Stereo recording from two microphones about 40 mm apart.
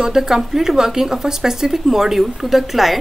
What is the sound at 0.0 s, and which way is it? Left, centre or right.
Speech, centre.